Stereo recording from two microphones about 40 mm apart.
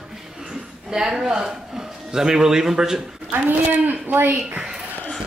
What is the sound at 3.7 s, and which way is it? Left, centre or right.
Speech, right.